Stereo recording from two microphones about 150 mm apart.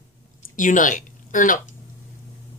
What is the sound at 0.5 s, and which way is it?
Speech, 60° left (ahead or behind).